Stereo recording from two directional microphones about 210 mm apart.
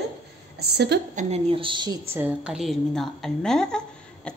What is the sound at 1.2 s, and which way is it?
Speech, 30° right (ahead or behind).